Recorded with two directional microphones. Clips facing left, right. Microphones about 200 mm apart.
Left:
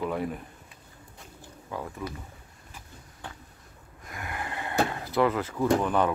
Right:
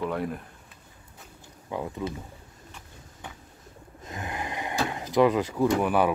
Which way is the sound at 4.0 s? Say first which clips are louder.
Right 3 dB; 20° right (ahead or behind).